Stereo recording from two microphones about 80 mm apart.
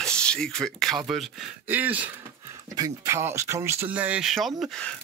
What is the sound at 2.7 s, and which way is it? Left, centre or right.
Speech, right.